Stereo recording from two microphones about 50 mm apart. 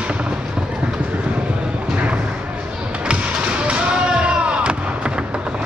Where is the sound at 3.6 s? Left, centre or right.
Right.